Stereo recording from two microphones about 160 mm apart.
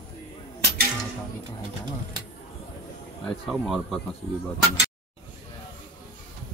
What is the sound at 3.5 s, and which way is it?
Speech, centre (ahead or behind).